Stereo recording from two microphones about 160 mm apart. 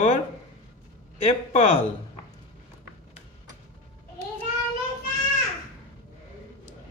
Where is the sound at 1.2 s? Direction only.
45° left (ahead or behind).